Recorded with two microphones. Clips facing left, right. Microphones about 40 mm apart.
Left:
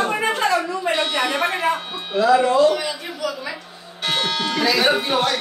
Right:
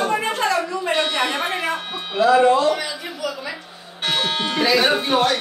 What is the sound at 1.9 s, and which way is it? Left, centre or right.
Speech, centre.